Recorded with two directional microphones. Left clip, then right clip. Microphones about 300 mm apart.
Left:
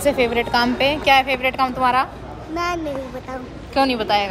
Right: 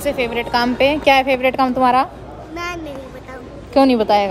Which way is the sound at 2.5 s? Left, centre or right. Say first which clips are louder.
Left 4 dB; centre.